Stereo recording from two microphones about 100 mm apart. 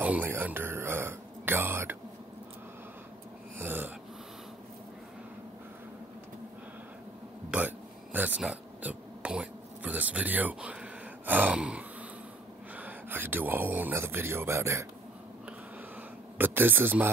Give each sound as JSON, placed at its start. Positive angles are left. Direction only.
{"t": 0.0, "sound": "speech", "side_deg": -15}
{"t": 3.5, "sound": "dog", "side_deg": -20}
{"t": 7.5, "sound": "a sound", "side_deg": -15}
{"t": 12.7, "sound": "speech", "side_deg": -15}
{"t": 16.3, "sound": "speech", "side_deg": -20}